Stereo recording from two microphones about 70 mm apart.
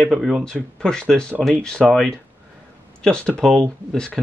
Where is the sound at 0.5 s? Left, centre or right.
Centre.